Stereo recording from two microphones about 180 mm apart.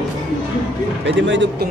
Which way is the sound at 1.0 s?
90° right.